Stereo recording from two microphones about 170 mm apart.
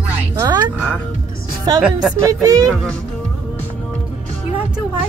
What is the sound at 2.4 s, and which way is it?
Speech, 20° right (ahead or behind).